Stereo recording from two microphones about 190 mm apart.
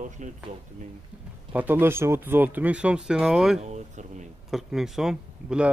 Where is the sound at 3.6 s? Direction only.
40° right (ahead or behind).